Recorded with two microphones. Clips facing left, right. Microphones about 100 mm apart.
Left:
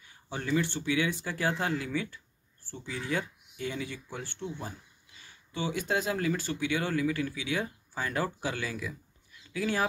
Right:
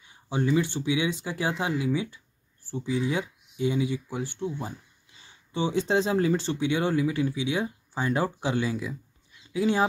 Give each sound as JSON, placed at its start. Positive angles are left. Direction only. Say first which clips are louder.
{"t": 0.0, "sound": "speech", "louder": "right 9 dB", "side_deg": -20}